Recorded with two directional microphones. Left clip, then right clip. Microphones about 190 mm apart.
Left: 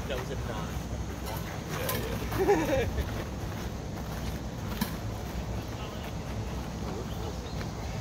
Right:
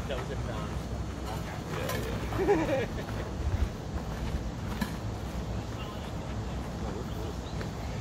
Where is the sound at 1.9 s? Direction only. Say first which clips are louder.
Left 2 dB; 55° left (ahead or behind).